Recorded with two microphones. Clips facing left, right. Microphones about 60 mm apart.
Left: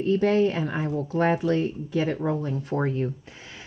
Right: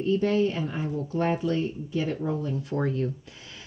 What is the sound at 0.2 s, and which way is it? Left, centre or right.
Speech, left.